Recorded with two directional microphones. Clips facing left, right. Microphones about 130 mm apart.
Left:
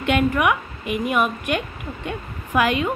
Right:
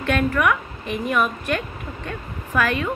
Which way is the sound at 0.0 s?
15° left (ahead or behind).